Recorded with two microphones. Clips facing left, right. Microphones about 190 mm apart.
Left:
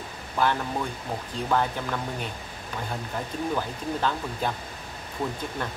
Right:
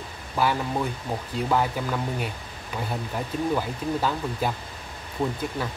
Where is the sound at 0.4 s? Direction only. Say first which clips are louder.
Right 1 dB; 5° right (ahead or behind).